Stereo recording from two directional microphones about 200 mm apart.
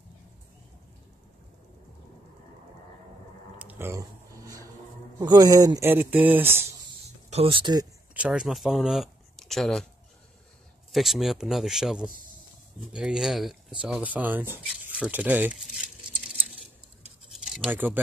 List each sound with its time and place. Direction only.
3.5 s a sound: 10° right (ahead or behind)
5.2 s speech: 20° right (ahead or behind)
7.2 s speech: 30° right (ahead or behind)
8.1 s speech: 5° right (ahead or behind)
10.9 s a man's voice: centre (ahead or behind)
16.3 s a sound: centre (ahead or behind)